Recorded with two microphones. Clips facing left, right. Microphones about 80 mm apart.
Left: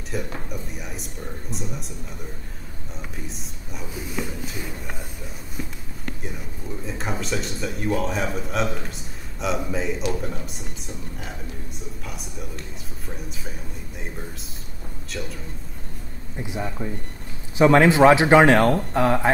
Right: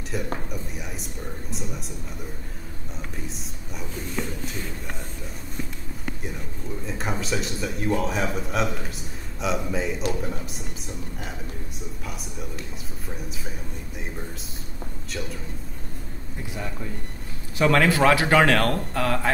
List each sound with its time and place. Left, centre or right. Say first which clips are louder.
0.1 s a man's voice: even; centre
3.3 s speech: even; centre
5.6 s run: left 1 dB; centre
6.9 s a man's voice: even; centre
12.1 s a man's voice: even; centre
15.0 s a man's voice: left 1 dB; centre
16.3 s speech: left 5 dB; centre